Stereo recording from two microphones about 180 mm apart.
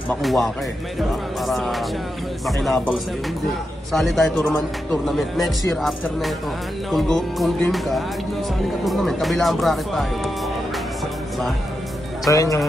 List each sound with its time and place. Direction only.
0.2 s speech: centre (ahead or behind)
12.3 s speech: 20° left (ahead or behind)